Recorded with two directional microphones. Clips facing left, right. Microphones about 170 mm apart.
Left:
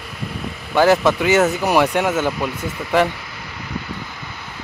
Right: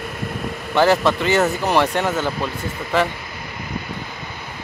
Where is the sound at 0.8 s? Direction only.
10° left (ahead or behind).